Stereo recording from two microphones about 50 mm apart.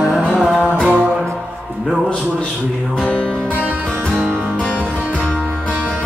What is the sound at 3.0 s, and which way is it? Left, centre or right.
Music, left.